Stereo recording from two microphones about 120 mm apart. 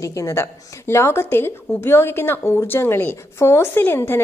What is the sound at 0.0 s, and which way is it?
Speech, 25° left (ahead or behind).